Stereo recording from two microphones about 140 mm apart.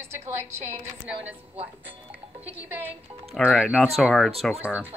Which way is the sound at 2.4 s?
10° right (ahead or behind).